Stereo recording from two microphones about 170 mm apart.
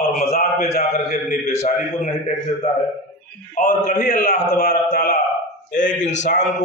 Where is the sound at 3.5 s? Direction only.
50° left (ahead or behind).